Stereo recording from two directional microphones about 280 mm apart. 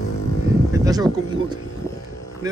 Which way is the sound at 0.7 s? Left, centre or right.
Centre.